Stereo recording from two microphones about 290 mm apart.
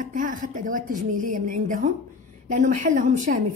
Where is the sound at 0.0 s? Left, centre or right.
Right.